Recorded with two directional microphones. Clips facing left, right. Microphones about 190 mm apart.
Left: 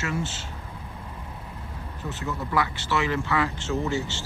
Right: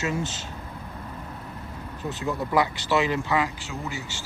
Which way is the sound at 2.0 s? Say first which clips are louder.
Right 3 dB; 15° right (ahead or behind).